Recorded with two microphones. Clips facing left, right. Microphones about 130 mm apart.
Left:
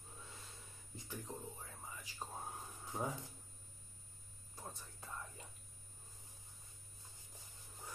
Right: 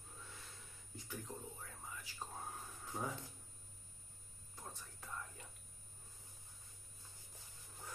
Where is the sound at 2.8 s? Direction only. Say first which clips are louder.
Left 2 dB; 15° left (ahead or behind).